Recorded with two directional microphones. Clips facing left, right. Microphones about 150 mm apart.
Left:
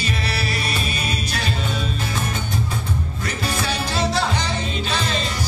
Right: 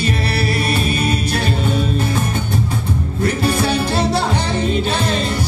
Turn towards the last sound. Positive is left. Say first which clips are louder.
# right 5 dB
turn(degrees=-60)  # may be behind; listen again after turning